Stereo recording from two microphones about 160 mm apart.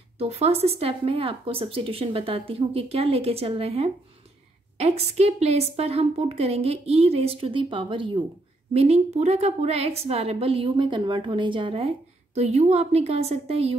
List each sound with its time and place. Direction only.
0.2 s speech: 40° right (ahead or behind)
8.7 s speech: 40° right (ahead or behind)